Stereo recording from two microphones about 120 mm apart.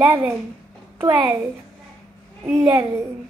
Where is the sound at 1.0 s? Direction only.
40° right (ahead or behind).